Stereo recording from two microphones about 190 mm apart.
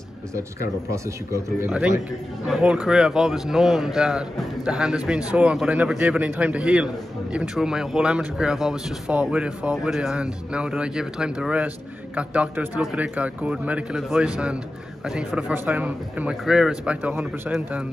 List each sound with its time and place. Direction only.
0.9 s a man's voice: 15° right (ahead or behind)
2.4 s a man's voice: 5° right (ahead or behind)